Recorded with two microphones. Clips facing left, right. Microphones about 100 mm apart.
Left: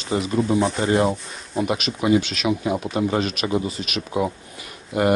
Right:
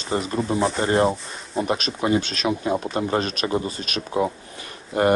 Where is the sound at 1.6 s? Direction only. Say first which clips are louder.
Left 1 dB; 35° right (ahead or behind).